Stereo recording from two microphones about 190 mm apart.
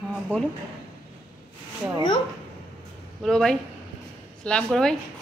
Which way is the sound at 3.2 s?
Centre (ahead or behind).